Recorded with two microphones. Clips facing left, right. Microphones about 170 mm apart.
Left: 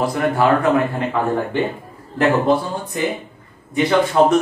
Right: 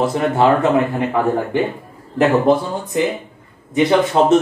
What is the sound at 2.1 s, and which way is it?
A man's voice, 20° right (ahead or behind).